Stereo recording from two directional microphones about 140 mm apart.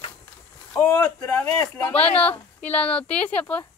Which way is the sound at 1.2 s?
10° left (ahead or behind).